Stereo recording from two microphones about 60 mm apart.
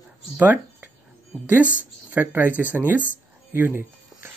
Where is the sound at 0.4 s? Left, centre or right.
Right.